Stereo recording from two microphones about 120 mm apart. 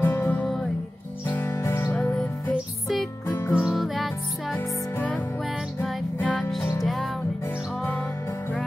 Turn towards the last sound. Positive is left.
turn(degrees=0)  # may be behind; listen again after turning